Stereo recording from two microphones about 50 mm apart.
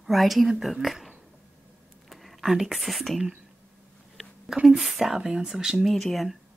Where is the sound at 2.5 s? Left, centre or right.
Centre.